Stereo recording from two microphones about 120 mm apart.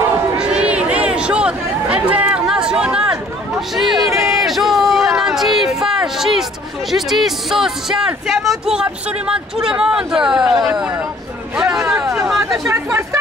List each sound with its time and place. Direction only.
0.4 s chatter: 10° right (ahead or behind)
3.7 s a sound: centre (ahead or behind)
6.9 s speech: centre (ahead or behind)
11.5 s hubbub: 5° right (ahead or behind)
12.6 s speech: 20° right (ahead or behind)